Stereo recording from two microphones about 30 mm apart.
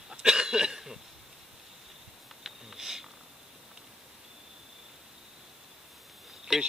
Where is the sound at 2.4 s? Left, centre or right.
Centre.